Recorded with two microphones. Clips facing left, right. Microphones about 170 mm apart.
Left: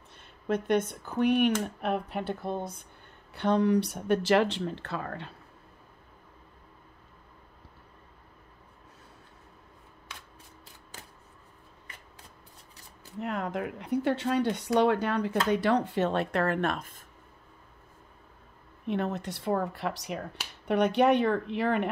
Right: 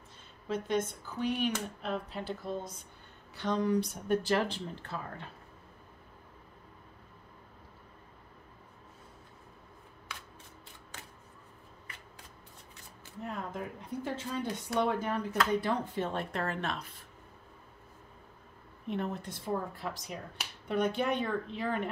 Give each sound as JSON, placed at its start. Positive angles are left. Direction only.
{"t": 0.5, "sound": "speech", "side_deg": 65}
{"t": 13.2, "sound": "speech", "side_deg": 75}
{"t": 18.9, "sound": "speech", "side_deg": 75}